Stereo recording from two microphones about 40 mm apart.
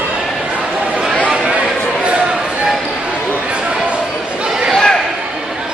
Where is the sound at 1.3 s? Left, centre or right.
Right.